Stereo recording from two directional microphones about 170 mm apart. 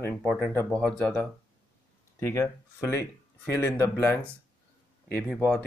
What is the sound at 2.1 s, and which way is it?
Speech, 15° left (ahead or behind).